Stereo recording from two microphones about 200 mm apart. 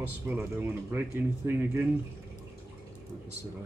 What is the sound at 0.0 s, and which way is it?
Speech, 10° right (ahead or behind).